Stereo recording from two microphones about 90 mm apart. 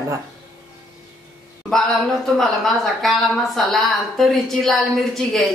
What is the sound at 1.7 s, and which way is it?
A woman's voice, 5° left (ahead or behind).